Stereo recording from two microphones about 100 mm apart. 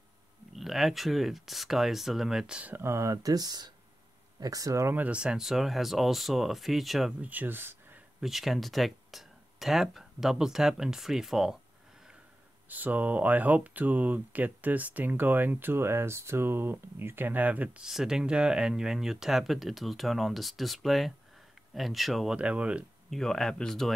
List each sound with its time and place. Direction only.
0.5 s speech: centre (ahead or behind)
2.7 s speech: 25° right (ahead or behind)
4.9 s speech: 15° right (ahead or behind)
7.2 s speech: 15° right (ahead or behind)
8.2 s speech: centre (ahead or behind)
12.6 s speech: 15° right (ahead or behind)
17.8 s speech: 5° right (ahead or behind)
23.0 s speech: 5° left (ahead or behind)